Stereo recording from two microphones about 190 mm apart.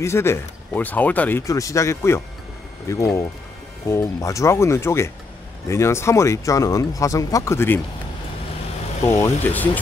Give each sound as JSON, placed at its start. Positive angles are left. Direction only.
{"t": 0.0, "sound": "speech", "side_deg": 15}
{"t": 9.0, "sound": "speech", "side_deg": 15}